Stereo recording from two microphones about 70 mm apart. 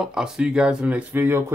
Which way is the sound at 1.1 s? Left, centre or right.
Right.